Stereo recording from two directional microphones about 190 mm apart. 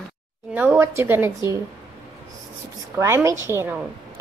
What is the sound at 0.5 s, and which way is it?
A woman's voice, 10° right (ahead or behind).